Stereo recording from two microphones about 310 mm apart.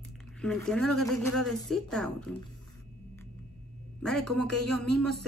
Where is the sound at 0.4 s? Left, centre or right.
Centre.